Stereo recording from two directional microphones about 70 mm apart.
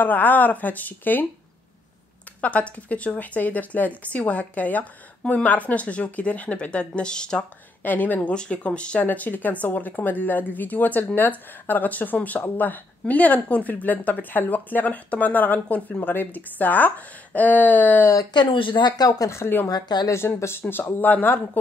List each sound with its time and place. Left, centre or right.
0.0 s speech: left
2.4 s speech: left
7.8 s speech: left
18.3 s speech: left
18.9 s speech: left
19.3 s speech: left
19.7 s speech: left
20.3 s speech: left
20.9 s speech: left